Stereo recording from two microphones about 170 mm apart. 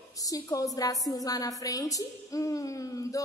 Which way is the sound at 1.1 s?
20° left (ahead or behind).